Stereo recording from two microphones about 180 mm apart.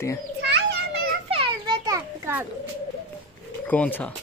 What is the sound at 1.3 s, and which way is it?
Children playing, 30° right (ahead or behind).